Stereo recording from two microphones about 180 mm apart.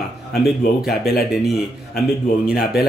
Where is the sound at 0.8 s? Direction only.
60° left (ahead or behind).